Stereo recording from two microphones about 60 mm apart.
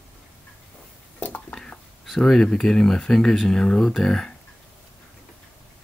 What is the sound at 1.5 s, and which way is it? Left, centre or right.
Whispering, centre.